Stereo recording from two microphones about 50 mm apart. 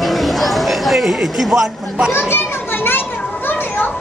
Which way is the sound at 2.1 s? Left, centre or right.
Left.